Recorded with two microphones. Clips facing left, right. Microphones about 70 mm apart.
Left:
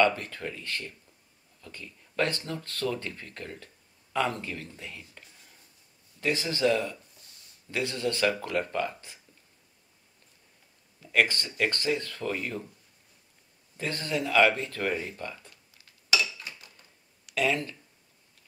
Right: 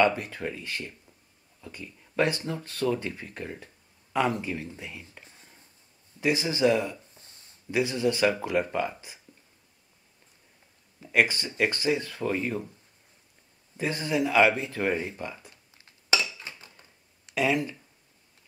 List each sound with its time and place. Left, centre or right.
0.0 s speech: centre
5.3 s a sound: right
6.2 s speech: centre
7.2 s a sound: right
7.7 s speech: centre
11.0 s speech: centre
13.7 s speech: centre
15.5 s a sound: right
17.3 s speech: centre